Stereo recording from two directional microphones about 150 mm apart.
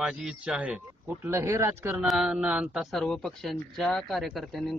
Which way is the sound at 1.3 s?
20° right (ahead or behind).